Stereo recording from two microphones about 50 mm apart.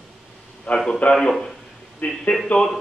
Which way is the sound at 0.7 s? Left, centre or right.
Left.